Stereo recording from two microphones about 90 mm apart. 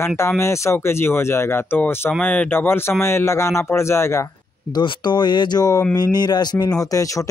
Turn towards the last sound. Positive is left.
turn(degrees=40)  # may be behind; listen again after turning